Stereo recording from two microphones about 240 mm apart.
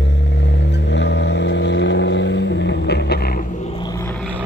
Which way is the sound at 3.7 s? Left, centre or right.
Centre.